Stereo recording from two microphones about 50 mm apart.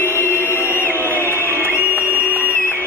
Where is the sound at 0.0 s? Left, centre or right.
Left.